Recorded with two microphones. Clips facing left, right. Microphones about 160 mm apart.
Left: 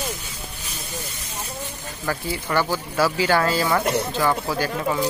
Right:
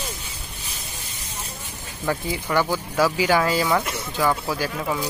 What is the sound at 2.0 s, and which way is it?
Speech, 15° right (ahead or behind).